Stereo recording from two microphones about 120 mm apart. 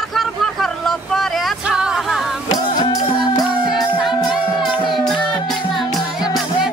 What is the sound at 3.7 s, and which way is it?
Music, centre (ahead or behind).